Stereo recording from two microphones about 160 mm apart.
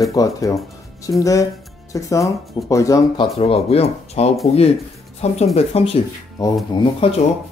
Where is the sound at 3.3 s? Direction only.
40° left (ahead or behind).